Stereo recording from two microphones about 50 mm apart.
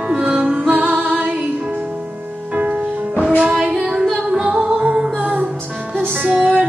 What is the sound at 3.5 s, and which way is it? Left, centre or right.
Female singing, centre.